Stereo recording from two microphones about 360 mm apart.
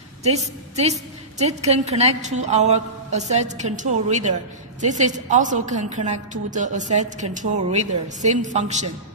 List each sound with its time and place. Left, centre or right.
0.2 s a woman's voice: centre